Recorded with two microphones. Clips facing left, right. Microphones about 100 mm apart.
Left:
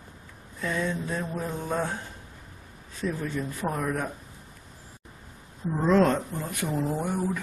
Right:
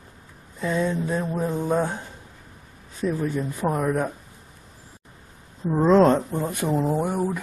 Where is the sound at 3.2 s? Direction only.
15° right (ahead or behind).